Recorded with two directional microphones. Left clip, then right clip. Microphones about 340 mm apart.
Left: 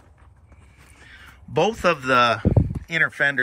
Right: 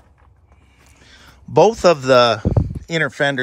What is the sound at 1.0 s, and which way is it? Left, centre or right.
Crow, centre.